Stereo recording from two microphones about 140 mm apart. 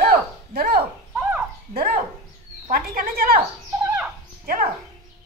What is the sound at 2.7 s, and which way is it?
Speech, 90° right.